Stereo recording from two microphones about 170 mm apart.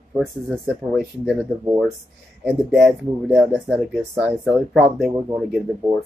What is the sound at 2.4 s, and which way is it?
Speech, 5° right (ahead or behind).